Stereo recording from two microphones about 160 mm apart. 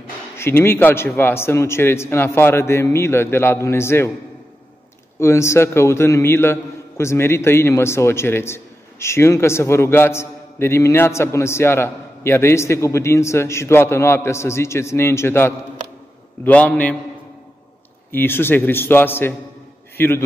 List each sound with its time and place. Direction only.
0.4 s a man's voice: 15° left (ahead or behind)
5.2 s a man's voice: 15° left (ahead or behind)
18.1 s a man's voice: 15° left (ahead or behind)